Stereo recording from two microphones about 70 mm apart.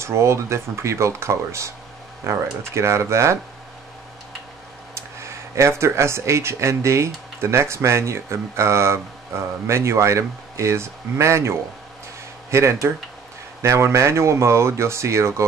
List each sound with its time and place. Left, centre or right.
0.0 s speech: right
4.9 s speech: right